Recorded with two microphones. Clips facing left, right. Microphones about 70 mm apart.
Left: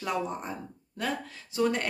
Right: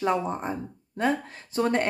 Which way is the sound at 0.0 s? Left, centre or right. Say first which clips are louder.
Right 6 dB; right.